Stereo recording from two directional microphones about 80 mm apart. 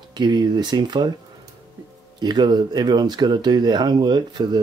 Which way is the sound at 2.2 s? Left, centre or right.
Right.